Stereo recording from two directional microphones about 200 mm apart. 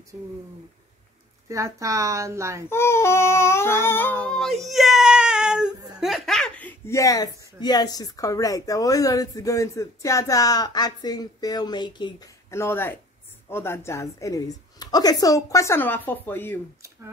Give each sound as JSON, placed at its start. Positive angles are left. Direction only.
{"t": 1.5, "sound": "a woman's voice", "side_deg": -15}
{"t": 2.7, "sound": "speech", "side_deg": 15}